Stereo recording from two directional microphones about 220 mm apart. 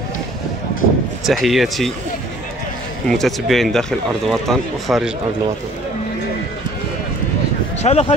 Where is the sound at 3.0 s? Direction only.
Centre (ahead or behind).